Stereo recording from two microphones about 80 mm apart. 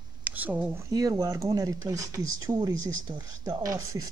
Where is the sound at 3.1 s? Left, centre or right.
Right.